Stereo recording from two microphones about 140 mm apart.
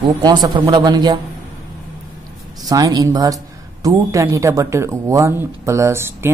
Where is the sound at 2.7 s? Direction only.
25° right (ahead or behind).